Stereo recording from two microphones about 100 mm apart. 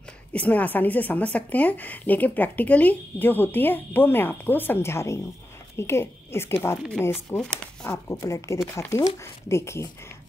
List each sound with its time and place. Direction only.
0.3 s a woman's voice: 15° left (ahead or behind)
7.2 s a woman's voice: 5° left (ahead or behind)
7.8 s speech: 30° left (ahead or behind)